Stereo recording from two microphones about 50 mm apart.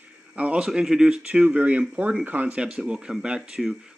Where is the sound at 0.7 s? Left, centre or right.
Centre.